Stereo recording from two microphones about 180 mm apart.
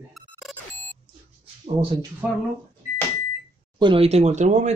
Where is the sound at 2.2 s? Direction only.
10° right (ahead or behind).